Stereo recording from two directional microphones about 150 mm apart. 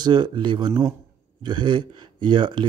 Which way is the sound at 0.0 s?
30° right (ahead or behind).